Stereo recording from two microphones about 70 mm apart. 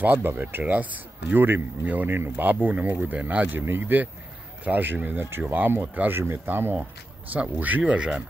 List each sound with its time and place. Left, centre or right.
0.0 s speech: right